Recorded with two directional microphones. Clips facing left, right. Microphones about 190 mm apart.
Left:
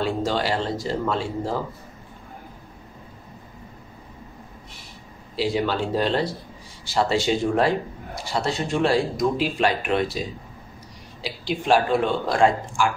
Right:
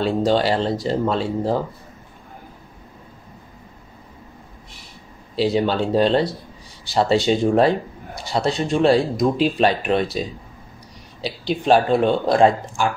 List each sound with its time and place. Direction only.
0.0 s speech: 30° right (ahead or behind)
5.3 s speech: 30° right (ahead or behind)
11.4 s speech: 30° right (ahead or behind)